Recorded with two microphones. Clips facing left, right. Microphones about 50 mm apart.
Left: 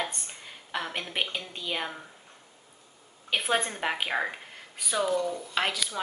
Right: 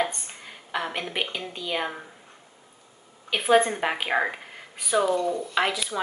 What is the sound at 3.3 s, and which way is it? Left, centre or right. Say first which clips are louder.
A woman's voice: right 8 dB; centre.